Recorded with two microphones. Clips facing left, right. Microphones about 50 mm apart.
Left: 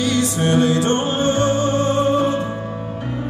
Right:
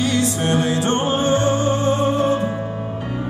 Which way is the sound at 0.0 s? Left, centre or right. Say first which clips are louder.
Left 1 dB; right.